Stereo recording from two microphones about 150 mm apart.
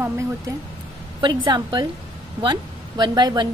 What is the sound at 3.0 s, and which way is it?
Speech, 30° right (ahead or behind).